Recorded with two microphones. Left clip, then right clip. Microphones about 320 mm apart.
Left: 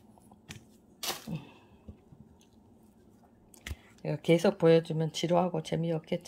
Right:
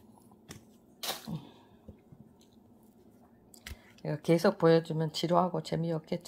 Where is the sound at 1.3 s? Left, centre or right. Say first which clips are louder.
Left 1 dB; centre.